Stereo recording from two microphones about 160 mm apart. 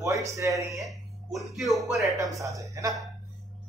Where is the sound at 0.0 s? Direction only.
20° right (ahead or behind).